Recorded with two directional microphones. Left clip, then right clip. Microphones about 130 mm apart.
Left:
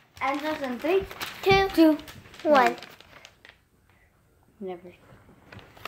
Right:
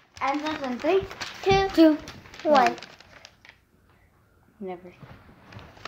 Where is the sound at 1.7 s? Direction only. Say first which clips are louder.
Right 2 dB; 20° right (ahead or behind).